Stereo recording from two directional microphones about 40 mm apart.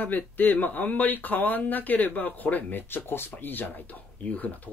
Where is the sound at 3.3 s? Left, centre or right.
Left.